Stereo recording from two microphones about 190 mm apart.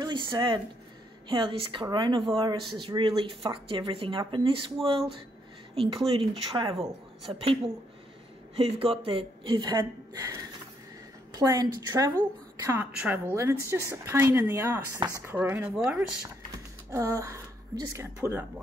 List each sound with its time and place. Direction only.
0.0 s a sound: 25° right (ahead or behind)
1.3 s a woman's voice: 30° right (ahead or behind); by 16.0 s 5° right (ahead or behind)
16.2 s typing: 15° right (ahead or behind)